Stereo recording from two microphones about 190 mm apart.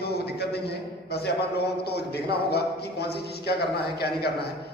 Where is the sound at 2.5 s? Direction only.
60° left (ahead or behind).